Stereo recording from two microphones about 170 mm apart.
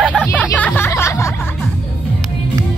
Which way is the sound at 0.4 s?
10° left (ahead or behind).